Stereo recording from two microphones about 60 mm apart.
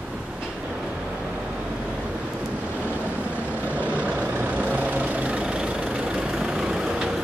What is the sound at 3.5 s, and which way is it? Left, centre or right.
Vehicle, right.